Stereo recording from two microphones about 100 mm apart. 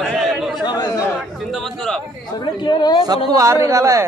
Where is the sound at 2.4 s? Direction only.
50° left (ahead or behind).